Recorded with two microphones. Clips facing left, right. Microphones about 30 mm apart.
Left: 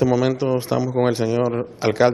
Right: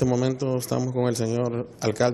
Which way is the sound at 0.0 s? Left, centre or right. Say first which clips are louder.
Left 5 dB; left.